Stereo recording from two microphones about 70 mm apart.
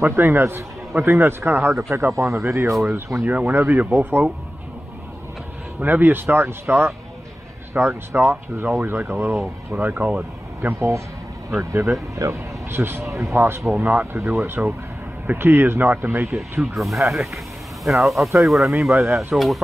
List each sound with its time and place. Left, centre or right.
0.1 s a man's voice: right
3.3 s a man's voice: right
5.8 s a man's voice: right
12.2 s a man's voice: right
13.7 s a man's voice: right
16.7 s speech: centre